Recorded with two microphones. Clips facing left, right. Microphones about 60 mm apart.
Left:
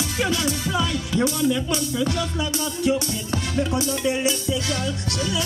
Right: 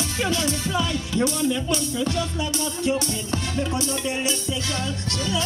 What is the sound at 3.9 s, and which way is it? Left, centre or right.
Speech, right.